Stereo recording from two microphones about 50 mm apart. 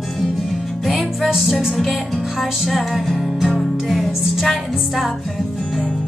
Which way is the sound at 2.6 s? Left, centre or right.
Centre.